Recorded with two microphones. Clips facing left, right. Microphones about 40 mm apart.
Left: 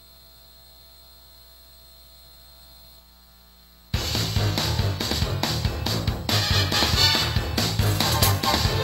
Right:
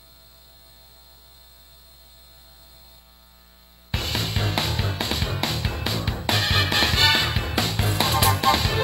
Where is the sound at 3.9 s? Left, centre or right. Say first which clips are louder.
Right 1 dB; right.